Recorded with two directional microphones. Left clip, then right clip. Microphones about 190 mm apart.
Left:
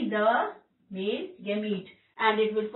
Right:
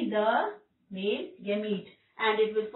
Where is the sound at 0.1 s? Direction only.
Centre (ahead or behind).